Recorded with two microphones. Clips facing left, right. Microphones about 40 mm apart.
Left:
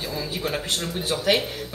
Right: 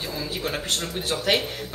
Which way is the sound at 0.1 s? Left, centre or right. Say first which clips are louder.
Left 1 dB; centre.